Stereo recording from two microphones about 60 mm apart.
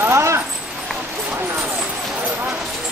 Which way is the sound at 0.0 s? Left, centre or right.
Right.